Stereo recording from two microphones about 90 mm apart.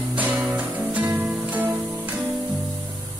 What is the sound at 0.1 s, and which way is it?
Music, 20° right (ahead or behind).